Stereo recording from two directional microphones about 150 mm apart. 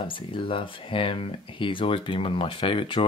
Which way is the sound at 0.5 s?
35° left (ahead or behind).